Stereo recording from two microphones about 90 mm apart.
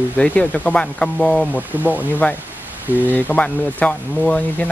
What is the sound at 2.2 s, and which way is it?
Speech, 15° left (ahead or behind).